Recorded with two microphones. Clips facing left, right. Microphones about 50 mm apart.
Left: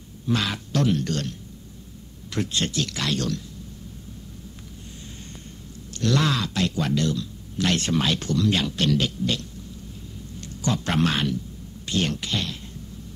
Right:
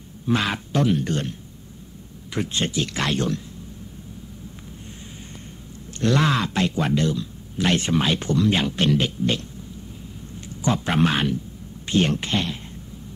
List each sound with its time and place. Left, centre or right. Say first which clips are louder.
0.3 s speech: right 3 dB; right
2.3 s speech: right 1 dB; centre
5.9 s a man's voice: right 3 dB; right